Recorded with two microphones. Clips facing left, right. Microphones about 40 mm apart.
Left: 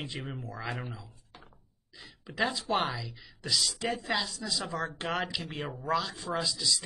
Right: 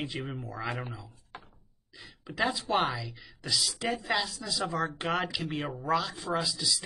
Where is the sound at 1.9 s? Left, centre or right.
Centre.